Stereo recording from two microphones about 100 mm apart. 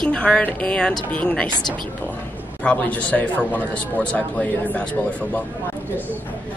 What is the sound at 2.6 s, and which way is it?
Speech, 15° left (ahead or behind).